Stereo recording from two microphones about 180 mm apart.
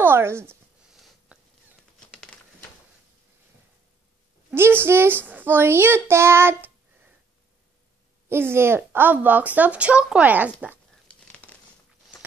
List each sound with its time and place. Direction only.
0.0 s speech: 15° right (ahead or behind)
1.3 s dog: 5° right (ahead or behind)
4.5 s a woman's voice: 15° right (ahead or behind)
8.3 s speech: 15° right (ahead or behind)
11.1 s crumpling: 5° left (ahead or behind)